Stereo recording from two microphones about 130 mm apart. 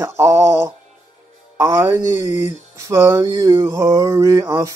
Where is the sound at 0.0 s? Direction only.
20° right (ahead or behind).